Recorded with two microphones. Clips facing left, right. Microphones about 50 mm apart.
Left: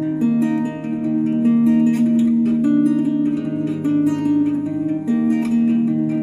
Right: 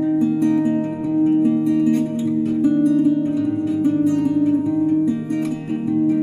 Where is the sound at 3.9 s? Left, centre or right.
Left.